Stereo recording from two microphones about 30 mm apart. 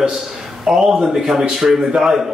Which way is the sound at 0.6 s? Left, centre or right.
Centre.